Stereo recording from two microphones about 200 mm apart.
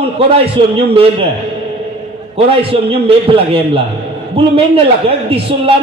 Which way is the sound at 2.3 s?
30° right (ahead or behind).